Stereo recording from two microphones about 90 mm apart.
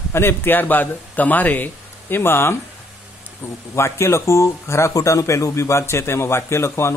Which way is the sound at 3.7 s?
30° left (ahead or behind).